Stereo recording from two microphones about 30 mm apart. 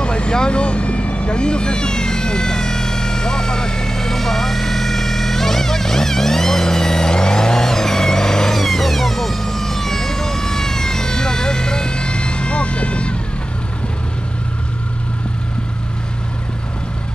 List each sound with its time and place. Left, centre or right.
0.0 s vehicle: left
8.5 s vehicle: centre; by 13.1 s left